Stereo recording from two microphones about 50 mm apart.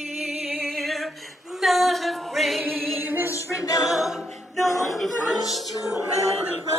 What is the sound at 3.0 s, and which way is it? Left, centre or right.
Music, right.